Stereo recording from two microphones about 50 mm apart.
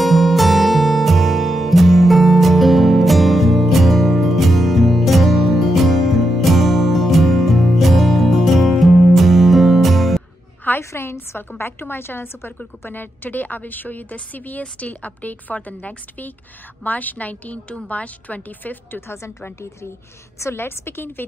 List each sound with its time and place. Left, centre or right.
0.0 s music: centre
10.8 s a sound: left
11.1 s a woman's voice: left
18.9 s a woman's voice: left